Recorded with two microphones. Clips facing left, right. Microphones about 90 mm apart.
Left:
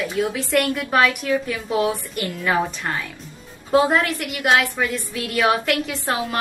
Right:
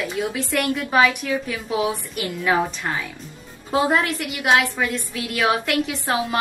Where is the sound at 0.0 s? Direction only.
Centre (ahead or behind).